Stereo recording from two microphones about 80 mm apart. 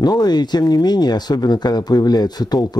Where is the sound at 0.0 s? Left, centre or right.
Left.